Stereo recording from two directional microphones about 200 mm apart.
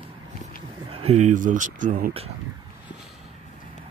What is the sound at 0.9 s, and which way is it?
Speech, 30° right (ahead or behind).